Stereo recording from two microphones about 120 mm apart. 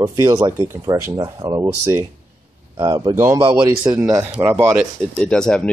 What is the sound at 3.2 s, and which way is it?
Speech, 20° right (ahead or behind).